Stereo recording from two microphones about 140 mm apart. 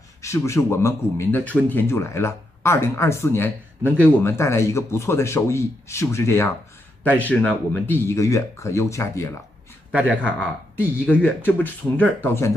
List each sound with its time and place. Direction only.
0.2 s a man's voice: 20° left (ahead or behind)
9.9 s speech: 10° right (ahead or behind)
11.1 s speech: 10° left (ahead or behind)